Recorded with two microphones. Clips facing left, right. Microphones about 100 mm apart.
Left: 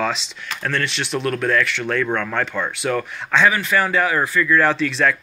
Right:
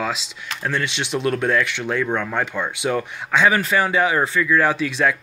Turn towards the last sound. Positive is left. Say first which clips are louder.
# left 1 dB
turn(degrees=-15)  # may be behind; listen again after turning